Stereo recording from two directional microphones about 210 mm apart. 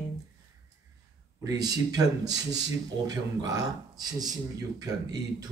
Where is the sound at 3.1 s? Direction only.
15° right (ahead or behind).